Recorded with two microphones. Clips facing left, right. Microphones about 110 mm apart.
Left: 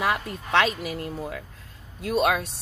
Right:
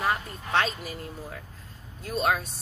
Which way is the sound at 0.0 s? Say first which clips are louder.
Left 2 dB; 85° left.